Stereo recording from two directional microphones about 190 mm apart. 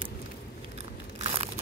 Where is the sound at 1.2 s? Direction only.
30° right (ahead or behind).